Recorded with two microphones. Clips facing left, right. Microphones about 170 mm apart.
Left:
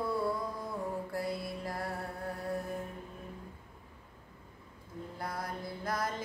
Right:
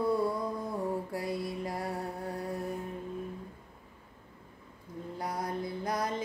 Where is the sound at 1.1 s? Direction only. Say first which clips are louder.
Right 2 dB; 15° right (ahead or behind).